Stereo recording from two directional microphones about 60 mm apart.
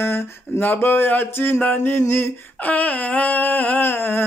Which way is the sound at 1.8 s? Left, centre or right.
Left.